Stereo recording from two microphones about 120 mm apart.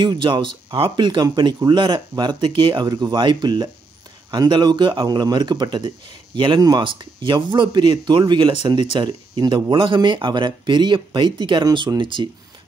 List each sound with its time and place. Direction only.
0.0 s speech: 40° right (ahead or behind)